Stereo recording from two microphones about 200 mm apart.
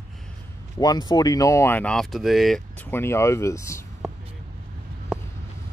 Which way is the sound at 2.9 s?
10° left (ahead or behind).